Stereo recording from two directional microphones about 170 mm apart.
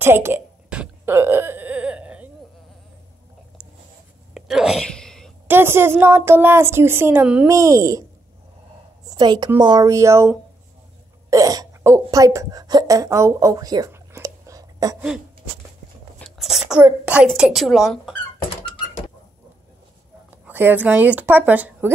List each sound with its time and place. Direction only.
0.0 s whimper: 15° right (ahead or behind)
4.3 s whispering: 5° right (ahead or behind)
5.5 s a woman's voice: 15° right (ahead or behind)
9.0 s a child's voice: 25° right (ahead or behind)
15.0 s a child's voice: 5° right (ahead or behind)
16.2 s whispering: centre (ahead or behind)
16.8 s a child's voice: 5° right (ahead or behind)
20.4 s a woman's voice: 10° right (ahead or behind)